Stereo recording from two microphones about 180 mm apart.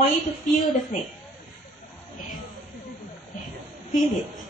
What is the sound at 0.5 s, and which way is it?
Speech, 45° left (ahead or behind).